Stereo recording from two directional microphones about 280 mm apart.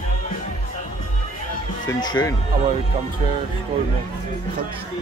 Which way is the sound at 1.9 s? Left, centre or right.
Centre.